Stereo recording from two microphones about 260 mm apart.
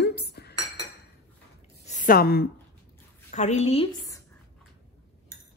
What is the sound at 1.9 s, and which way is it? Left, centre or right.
A woman's voice, left.